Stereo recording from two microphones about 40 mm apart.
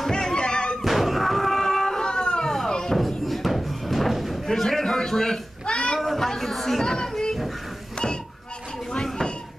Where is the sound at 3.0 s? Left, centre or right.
Centre.